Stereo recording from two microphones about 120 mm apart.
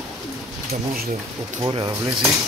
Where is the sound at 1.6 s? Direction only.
40° right (ahead or behind).